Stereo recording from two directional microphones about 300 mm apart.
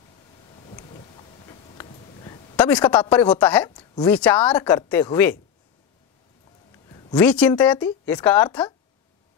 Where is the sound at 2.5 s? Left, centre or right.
Centre.